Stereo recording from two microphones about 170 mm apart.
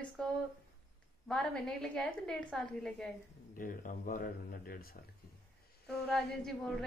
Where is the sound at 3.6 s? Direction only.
55° left (ahead or behind).